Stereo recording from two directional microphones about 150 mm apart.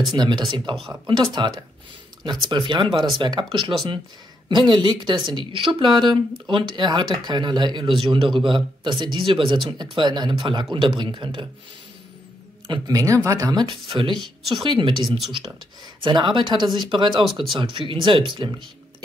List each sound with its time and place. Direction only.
0.1 s speech: 30° right (ahead or behind)
2.5 s speech: 30° right (ahead or behind)
12.6 s speech: 30° right (ahead or behind)
15.0 s speech: centre (ahead or behind)
16.0 s speech: 30° right (ahead or behind)